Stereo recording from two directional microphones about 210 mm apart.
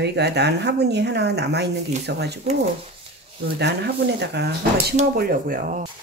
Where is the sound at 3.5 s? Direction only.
50° right (ahead or behind).